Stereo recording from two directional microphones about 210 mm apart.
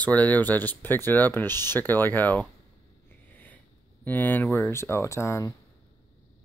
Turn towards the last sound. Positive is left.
turn(degrees=15)  # may be behind; listen again after turning